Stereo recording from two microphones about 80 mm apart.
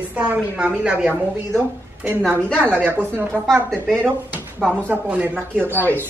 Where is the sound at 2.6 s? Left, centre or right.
Right.